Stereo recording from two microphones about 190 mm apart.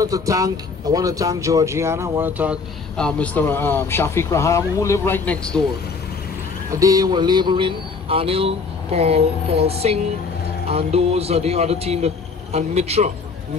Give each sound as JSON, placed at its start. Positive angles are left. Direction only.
{"t": 0.0, "sound": "speech", "side_deg": -20}
{"t": 3.0, "sound": "speech", "side_deg": 5}
{"t": 6.7, "sound": "speech", "side_deg": -20}